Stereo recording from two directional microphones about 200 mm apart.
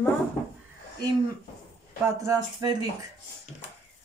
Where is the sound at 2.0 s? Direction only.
15° right (ahead or behind).